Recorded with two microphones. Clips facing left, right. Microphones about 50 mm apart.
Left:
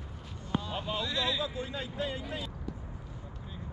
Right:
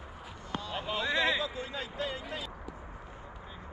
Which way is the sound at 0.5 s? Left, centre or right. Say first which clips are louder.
Left 4 dB; centre.